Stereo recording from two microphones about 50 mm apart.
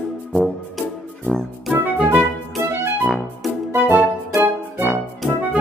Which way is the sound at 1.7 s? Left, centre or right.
Right.